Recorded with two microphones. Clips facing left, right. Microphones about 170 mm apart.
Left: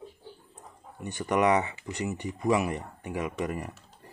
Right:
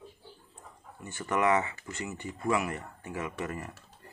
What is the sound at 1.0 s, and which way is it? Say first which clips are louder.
Speech: left 4 dB; 15° left (ahead or behind).